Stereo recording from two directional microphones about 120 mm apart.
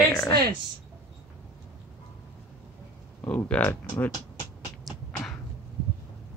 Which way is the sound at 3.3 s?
15° left (ahead or behind).